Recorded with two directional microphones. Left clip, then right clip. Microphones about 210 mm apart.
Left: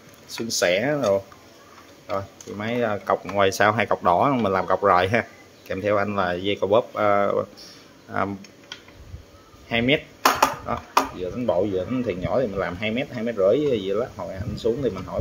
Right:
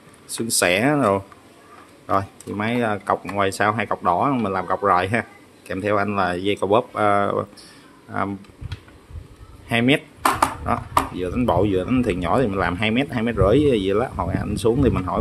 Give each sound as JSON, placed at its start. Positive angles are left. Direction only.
{"t": 0.3, "sound": "speech", "side_deg": -20}
{"t": 9.7, "sound": "speech", "side_deg": -10}